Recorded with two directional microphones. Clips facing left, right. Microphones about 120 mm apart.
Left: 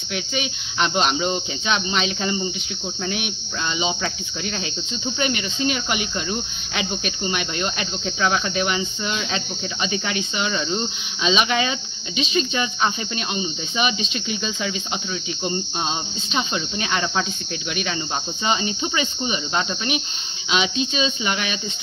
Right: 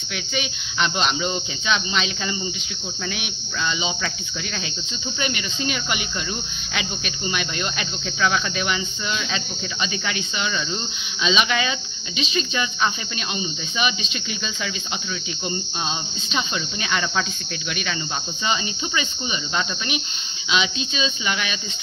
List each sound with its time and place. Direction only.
0.1 s cricket: 35° left (ahead or behind)
1.7 s cricket: 45° left (ahead or behind)
5.2 s cricket: 35° left (ahead or behind)
16.3 s speech: 30° left (ahead or behind)
18.5 s cricket: 35° left (ahead or behind)